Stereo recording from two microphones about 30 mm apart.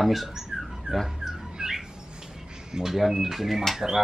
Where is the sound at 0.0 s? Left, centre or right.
Centre.